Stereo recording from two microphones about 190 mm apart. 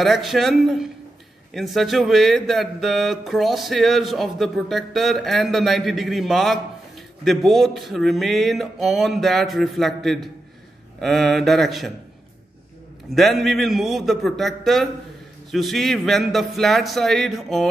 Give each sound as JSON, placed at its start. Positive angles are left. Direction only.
{"t": 0.0, "sound": "speech", "side_deg": 0}
{"t": 13.1, "sound": "speech", "side_deg": 0}